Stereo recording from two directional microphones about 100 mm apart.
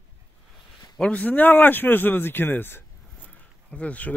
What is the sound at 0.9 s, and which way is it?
Speech, 15° left (ahead or behind).